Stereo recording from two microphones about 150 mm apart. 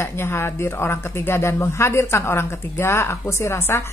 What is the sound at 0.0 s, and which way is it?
Speech, 15° left (ahead or behind).